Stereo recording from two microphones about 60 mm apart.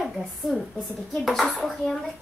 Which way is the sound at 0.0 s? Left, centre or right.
Centre.